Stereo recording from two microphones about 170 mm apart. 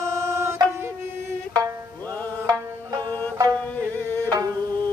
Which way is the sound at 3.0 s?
10° left (ahead or behind).